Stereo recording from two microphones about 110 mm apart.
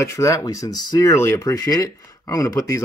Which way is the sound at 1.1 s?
25° left (ahead or behind).